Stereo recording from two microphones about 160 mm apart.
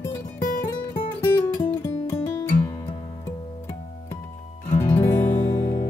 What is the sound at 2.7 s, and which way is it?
Music, 25° left (ahead or behind).